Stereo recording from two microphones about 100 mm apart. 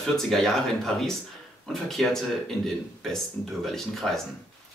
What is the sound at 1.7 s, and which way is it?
Speech, centre (ahead or behind).